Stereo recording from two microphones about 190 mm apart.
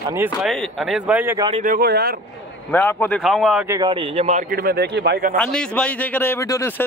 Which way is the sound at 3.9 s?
30° right (ahead or behind).